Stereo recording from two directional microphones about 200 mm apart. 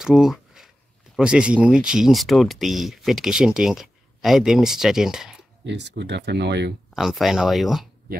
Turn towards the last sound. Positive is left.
turn(degrees=0)  # may be behind; listen again after turning